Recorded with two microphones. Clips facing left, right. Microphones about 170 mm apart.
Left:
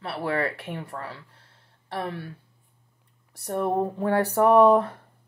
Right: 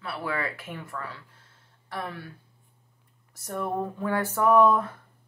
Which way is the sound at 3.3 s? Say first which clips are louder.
Left 5 dB; 35° left (ahead or behind).